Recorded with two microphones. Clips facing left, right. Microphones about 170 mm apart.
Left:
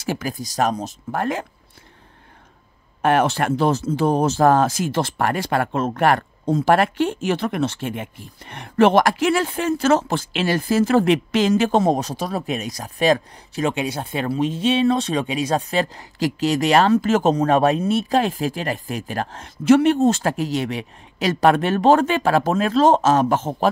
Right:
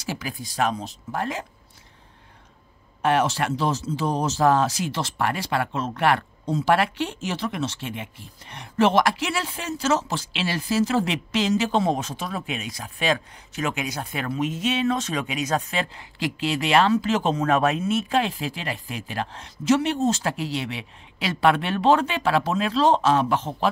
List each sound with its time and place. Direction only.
0.0 s speech: 45° left (ahead or behind)
3.0 s speech: 55° left (ahead or behind)